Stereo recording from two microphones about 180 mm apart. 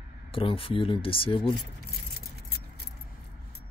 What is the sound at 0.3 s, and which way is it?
Speech, 30° left (ahead or behind).